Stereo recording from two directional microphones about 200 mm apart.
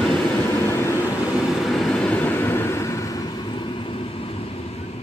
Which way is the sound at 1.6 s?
Centre (ahead or behind).